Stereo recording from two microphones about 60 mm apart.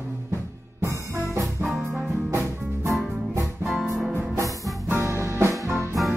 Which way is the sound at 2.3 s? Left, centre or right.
Right.